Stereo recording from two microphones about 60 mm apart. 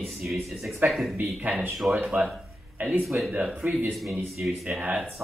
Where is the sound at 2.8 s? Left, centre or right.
Right.